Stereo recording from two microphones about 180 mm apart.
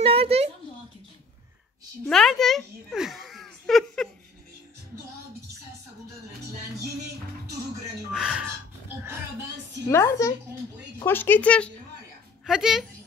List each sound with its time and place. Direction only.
0.0 s a sound: 30° right (ahead or behind)
2.0 s a child's voice: centre (ahead or behind)
8.1 s speech: 5° right (ahead or behind)
9.8 s speech: 15° left (ahead or behind); by 12.8 s 5° right (ahead or behind)